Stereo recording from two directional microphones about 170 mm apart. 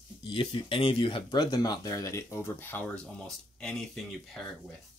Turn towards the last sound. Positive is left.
turn(degrees=5)  # may be behind; listen again after turning